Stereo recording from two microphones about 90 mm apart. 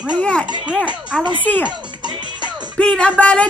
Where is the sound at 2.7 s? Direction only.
10° left (ahead or behind).